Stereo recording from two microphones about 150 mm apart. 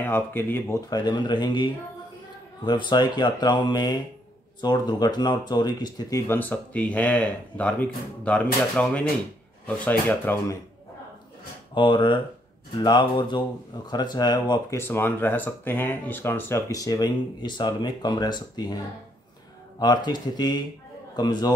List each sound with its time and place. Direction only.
0.0 s speech: 15° left (ahead or behind)
11.7 s speech: 35° left (ahead or behind)
14.8 s speech: 15° left (ahead or behind)
19.8 s speech: 25° left (ahead or behind)